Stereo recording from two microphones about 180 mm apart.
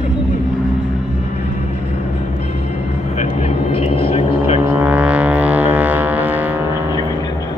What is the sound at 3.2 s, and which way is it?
Vehicle, 35° left (ahead or behind).